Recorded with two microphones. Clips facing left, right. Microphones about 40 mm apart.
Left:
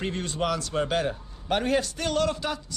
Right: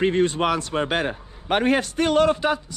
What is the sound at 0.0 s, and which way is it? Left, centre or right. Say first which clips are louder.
A man's voice: right 9 dB; right.